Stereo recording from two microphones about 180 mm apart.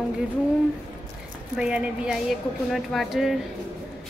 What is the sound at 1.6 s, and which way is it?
A woman's voice, 5° right (ahead or behind).